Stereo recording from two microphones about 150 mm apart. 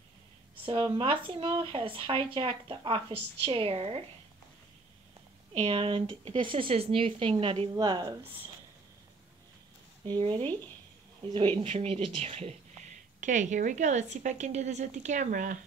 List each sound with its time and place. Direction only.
0.7 s speech: 35° right (ahead or behind)
5.6 s speech: 40° right (ahead or behind)
7.7 s speech: 25° right (ahead or behind)
10.0 s speech: 35° right (ahead or behind); by 15.6 s 55° right (ahead or behind)